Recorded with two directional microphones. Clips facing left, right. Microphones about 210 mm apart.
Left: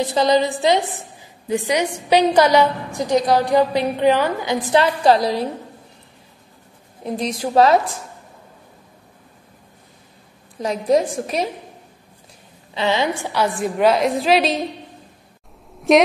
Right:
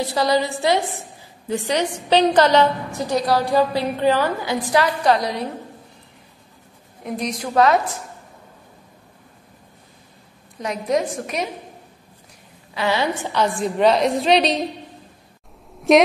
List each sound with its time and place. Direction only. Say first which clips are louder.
0.0 s a woman's voice: left 3 dB; 20° left (ahead or behind)
7.0 s a woman's voice: left 2 dB; 30° left (ahead or behind)
10.6 s a woman's voice: left 4 dB; 30° left (ahead or behind)
12.7 s a woman's voice: left 1 dB; 25° left (ahead or behind)
13.1 s a woman's voice: even; 10° left (ahead or behind)
15.9 s a woman's voice: even; centre (ahead or behind)